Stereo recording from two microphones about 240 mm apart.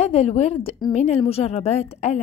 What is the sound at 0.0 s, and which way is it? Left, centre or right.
A woman's voice, left.